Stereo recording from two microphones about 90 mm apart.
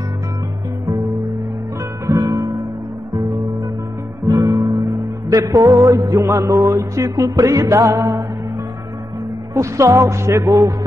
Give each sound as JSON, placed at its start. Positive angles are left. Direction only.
{"t": 2.0, "sound": "music", "side_deg": -40}
{"t": 4.4, "sound": "guitar", "side_deg": -40}
{"t": 5.3, "sound": "music", "side_deg": -40}
{"t": 9.5, "sound": "music", "side_deg": -35}